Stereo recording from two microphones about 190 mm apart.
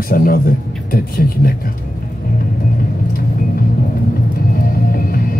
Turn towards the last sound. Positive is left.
turn(degrees=50)  # may be behind; listen again after turning